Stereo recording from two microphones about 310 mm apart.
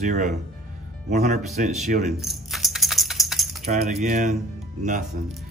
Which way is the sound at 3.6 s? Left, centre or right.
Right.